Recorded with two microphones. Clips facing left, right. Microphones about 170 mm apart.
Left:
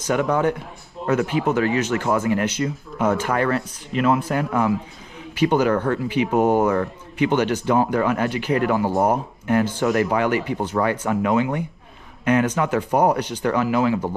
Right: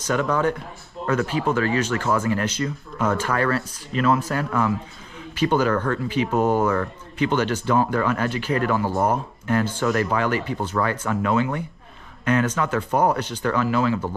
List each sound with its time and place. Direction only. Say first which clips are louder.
0.0 s a man's voice: left 2 dB; 15° left (ahead or behind)
6.6 s a man's voice: left 2 dB; 30° left (ahead or behind)
7.2 s speech: left 2 dB; 15° left (ahead or behind)